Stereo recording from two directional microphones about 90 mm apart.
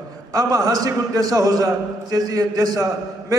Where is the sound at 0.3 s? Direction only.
45° right (ahead or behind).